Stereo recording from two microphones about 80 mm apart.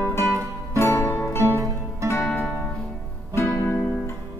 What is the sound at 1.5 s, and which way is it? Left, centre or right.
Music, right.